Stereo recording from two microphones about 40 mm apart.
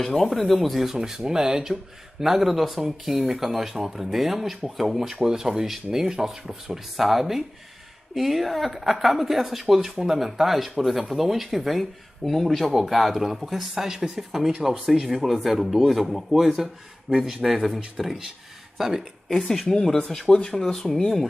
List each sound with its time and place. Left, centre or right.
0.0 s speech: centre
0.9 s speech: centre
5.1 s speech: centre
19.2 s speech: centre